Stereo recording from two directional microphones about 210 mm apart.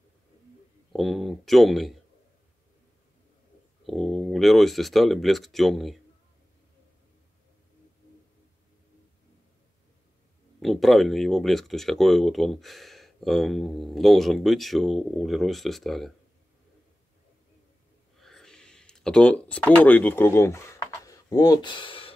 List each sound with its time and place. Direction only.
0.9 s speech: centre (ahead or behind)
3.8 s speech: centre (ahead or behind)
10.6 s speech: centre (ahead or behind)
18.2 s a sound: centre (ahead or behind); by 22.1 s 25° left (ahead or behind)